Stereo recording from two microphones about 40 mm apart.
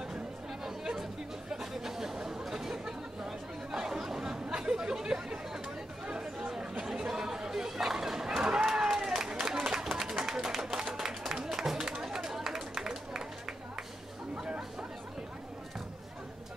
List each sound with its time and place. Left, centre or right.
0.7 s chatter: centre
8.6 s run: centre
9.9 s a sound: centre
14.3 s chatter: right